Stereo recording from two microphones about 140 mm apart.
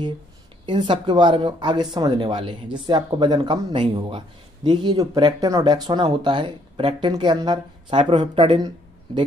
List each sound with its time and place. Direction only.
0.7 s speech: 35° right (ahead or behind)